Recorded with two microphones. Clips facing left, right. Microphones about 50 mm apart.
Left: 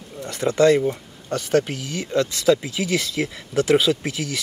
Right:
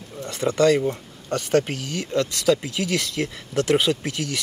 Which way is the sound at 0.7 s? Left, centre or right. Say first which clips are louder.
Left 2 dB; centre.